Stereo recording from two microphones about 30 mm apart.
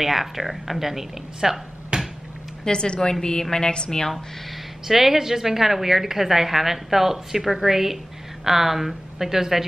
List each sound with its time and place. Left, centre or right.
0.0 s a woman's voice: centre
1.9 s a sound: right
2.6 s a woman's voice: left
4.8 s a woman's voice: centre